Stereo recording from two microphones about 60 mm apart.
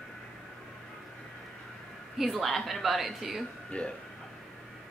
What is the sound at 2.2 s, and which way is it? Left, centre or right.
A woman's voice, centre.